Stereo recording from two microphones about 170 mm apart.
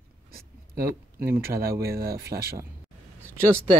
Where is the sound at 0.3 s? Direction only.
65° right (ahead or behind).